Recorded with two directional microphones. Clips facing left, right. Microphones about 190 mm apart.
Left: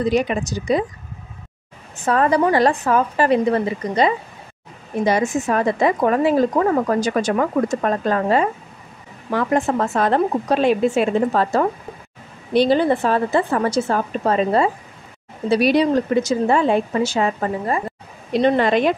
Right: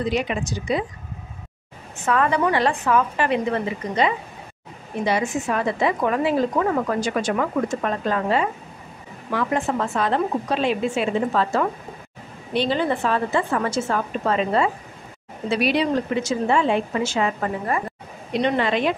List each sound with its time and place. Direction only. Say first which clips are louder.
0.0 s a woman's voice: left 5 dB; 40° left (ahead or behind)
2.0 s a woman's voice: left 4 dB; 35° left (ahead or behind)
18.3 s speech: left 5 dB; 40° left (ahead or behind)